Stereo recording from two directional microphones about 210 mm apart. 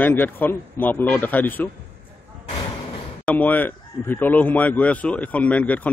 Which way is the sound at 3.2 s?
5° left (ahead or behind).